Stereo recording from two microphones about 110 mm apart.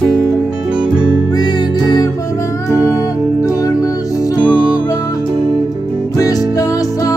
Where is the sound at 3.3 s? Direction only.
30° left (ahead or behind).